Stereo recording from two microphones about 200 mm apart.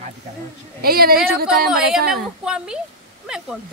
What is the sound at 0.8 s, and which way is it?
Speech, 50° right (ahead or behind).